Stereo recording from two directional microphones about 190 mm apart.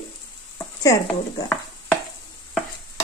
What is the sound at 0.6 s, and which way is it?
Stir, 15° left (ahead or behind).